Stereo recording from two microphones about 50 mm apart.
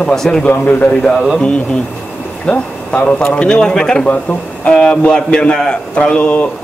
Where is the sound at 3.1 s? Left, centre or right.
Left.